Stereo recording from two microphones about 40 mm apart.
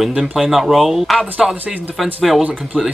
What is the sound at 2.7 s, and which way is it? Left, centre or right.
Speech, left.